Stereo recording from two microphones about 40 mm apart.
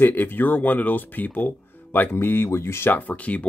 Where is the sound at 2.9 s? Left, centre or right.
Left.